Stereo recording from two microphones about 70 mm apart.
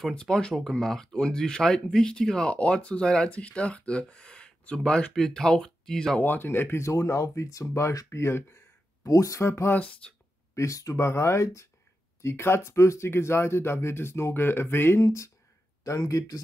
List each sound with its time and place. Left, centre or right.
0.0 s speech: centre
6.2 s speech: left
6.8 s speech: left
8.2 s speech: left
9.0 s speech: left
9.4 s speech: left
10.0 s speech: centre
10.5 s speech: left
11.1 s speech: left
15.0 s speech: left